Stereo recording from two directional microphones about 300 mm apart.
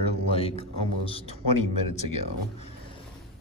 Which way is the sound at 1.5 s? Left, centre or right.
Left.